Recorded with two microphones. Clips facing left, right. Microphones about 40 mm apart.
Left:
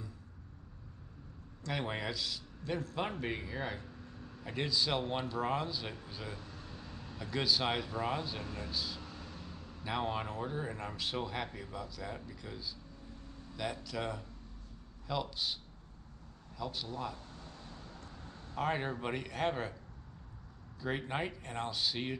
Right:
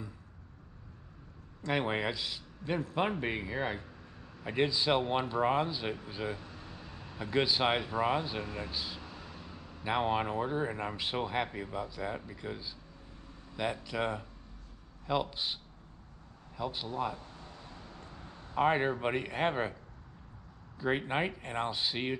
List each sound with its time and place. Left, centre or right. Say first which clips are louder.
1.6 s a man's voice: right 6 dB; right
16.5 s a sound: right 5 dB; right
20.8 s a man's voice: right 5 dB; right